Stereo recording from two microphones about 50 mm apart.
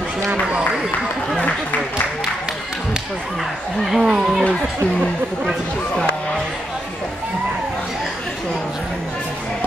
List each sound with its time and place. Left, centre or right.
0.3 s speech: right
3.8 s speech: centre